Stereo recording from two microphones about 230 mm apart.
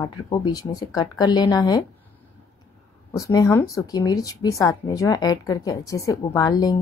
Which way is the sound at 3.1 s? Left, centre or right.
Centre.